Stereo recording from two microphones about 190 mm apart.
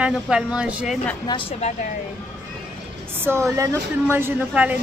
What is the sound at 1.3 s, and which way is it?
Speech, 30° left (ahead or behind).